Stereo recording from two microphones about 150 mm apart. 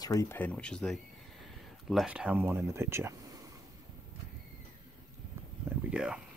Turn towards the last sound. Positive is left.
turn(degrees=-5)  # may be behind; listen again after turning